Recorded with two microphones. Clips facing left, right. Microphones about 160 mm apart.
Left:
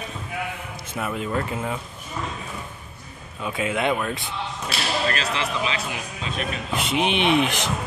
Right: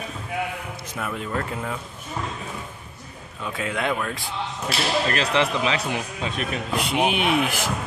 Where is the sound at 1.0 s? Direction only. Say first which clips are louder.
Left 2 dB; 10° left (ahead or behind).